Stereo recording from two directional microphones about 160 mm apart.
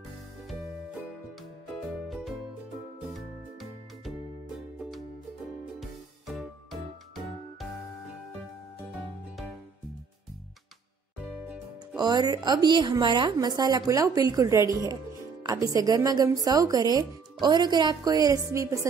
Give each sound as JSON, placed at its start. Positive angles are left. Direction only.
{"t": 2.0, "sound": "music", "side_deg": 0}
{"t": 5.8, "sound": "music", "side_deg": 0}
{"t": 11.4, "sound": "music", "side_deg": -10}
{"t": 12.0, "sound": "a woman's voice", "side_deg": -25}